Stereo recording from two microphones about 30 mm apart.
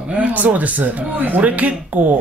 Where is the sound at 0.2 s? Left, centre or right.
Right.